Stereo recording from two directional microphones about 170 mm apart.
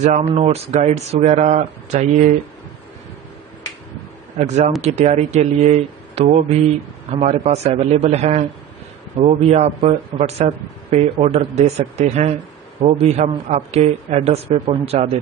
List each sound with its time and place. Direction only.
0.0 s speech: 40° right (ahead or behind)
4.4 s speech: 40° right (ahead or behind)